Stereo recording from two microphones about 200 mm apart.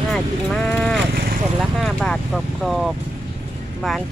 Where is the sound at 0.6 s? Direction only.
5° left (ahead or behind).